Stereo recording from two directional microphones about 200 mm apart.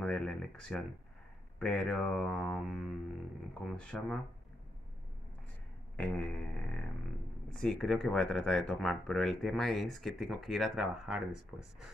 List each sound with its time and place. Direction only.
0.0 s speech: 5° left (ahead or behind)
5.9 s speech: 5° left (ahead or behind)
7.4 s speech: centre (ahead or behind)